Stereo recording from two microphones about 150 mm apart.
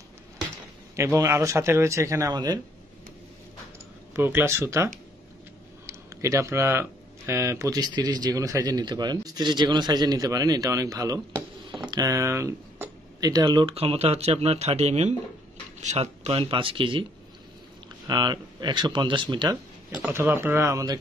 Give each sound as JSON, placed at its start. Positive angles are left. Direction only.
{"t": 0.9, "sound": "speech", "side_deg": -20}
{"t": 4.1, "sound": "speech", "side_deg": -15}
{"t": 18.0, "sound": "speech", "side_deg": -30}
{"t": 19.9, "sound": "speech", "side_deg": -15}